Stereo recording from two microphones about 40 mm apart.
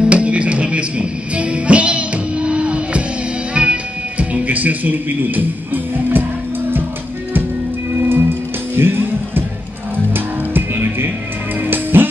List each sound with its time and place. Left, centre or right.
0.1 s music: right
8.0 s music: right
11.6 s music: right